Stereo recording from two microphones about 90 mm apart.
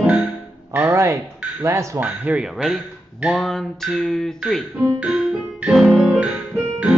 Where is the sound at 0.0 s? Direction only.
10° right (ahead or behind).